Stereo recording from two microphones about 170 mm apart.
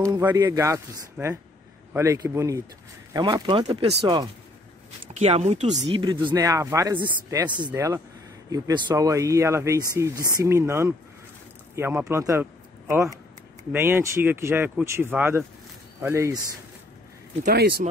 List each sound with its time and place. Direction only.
0.0 s speech: 20° right (ahead or behind)
5.2 s speech: 40° right (ahead or behind)
5.9 s speech: 30° right (ahead or behind)
17.5 s speech: 65° right (ahead or behind)